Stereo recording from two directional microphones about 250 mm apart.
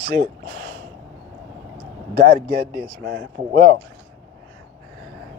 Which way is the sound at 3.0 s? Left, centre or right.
Right.